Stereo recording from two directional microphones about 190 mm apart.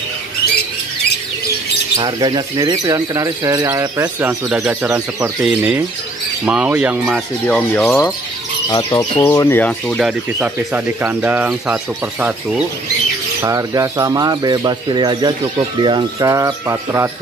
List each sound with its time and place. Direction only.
2.0 s speech: 20° right (ahead or behind)
7.4 s speech: 10° left (ahead or behind)
13.4 s speech: 15° right (ahead or behind)